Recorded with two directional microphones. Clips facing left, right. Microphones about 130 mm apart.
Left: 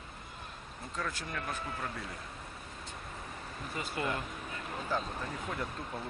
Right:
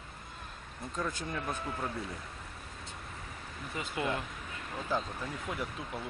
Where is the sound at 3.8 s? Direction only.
15° right (ahead or behind).